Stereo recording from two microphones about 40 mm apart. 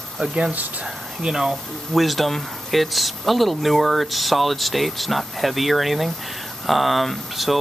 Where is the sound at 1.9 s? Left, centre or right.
Centre.